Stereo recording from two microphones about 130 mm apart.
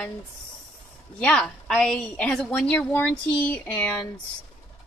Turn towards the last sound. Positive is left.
turn(degrees=10)  # may be behind; listen again after turning